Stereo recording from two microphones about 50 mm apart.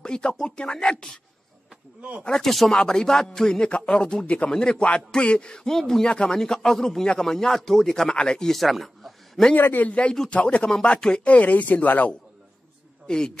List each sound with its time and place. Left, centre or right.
0.0 s speech: centre
2.0 s speech: right
2.2 s speech: centre
8.5 s a sound: centre
9.6 s speech: left
9.8 s speech: left
13.0 s a man's voice: centre